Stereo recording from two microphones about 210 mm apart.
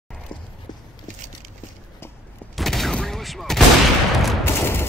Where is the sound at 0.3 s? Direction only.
20° left (ahead or behind).